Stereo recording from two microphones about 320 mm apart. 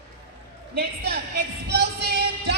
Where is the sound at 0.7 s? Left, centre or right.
Right.